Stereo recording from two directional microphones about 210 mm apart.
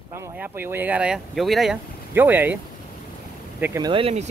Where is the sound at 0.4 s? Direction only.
10° right (ahead or behind).